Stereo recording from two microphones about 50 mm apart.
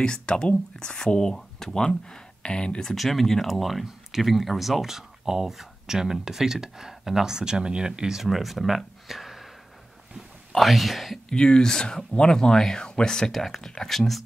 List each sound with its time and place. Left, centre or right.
0.0 s speech: centre
3.0 s speech: centre
10.5 s speech: centre
11.2 s speech: centre